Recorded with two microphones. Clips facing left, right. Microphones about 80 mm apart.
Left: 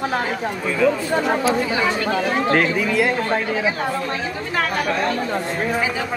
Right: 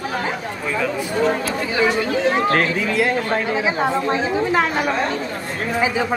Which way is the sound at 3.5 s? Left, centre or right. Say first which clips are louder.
Right 2 dB; right.